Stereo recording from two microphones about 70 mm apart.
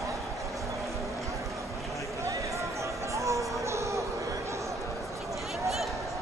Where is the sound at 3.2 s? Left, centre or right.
Right.